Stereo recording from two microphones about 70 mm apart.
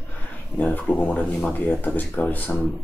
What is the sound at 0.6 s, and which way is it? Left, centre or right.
Speech, left.